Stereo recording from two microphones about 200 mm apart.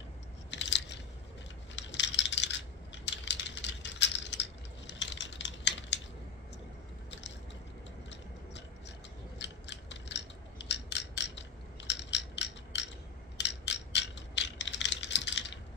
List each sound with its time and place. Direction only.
0.5 s biting: 60° left (ahead or behind)
1.8 s coin: 65° left (ahead or behind)
8.1 s tick-tock: 60° left (ahead or behind)
9.4 s scissors: 60° left (ahead or behind)
11.9 s crushing: 60° left (ahead or behind)
13.4 s mechanisms: 60° left (ahead or behind)